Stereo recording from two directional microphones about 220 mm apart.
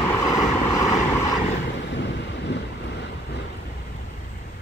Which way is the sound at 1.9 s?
50° left (ahead or behind).